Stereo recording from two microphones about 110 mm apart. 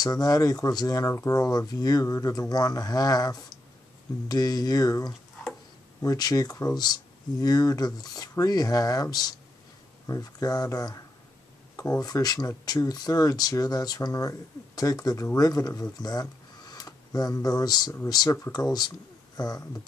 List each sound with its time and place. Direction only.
0.0 s speech: 35° left (ahead or behind)